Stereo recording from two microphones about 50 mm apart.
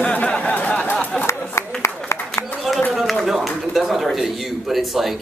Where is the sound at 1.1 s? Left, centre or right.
Centre.